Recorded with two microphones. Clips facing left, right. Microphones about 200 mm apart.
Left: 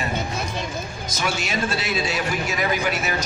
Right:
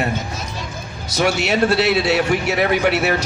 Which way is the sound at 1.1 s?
70° right (ahead or behind).